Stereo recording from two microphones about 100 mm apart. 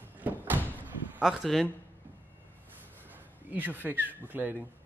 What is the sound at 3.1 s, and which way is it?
Speech, 20° right (ahead or behind).